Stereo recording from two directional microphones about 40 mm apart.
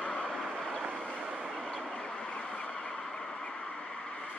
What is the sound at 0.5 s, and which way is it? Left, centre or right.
Vehicle, centre.